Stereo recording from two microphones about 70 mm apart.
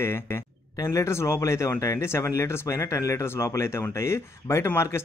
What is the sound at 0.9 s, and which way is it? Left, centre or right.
Speech, left.